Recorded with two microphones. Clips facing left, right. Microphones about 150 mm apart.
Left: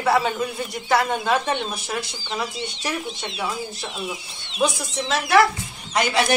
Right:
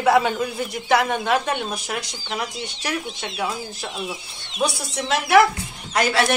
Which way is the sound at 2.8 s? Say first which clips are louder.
Right 2 dB; centre (ahead or behind).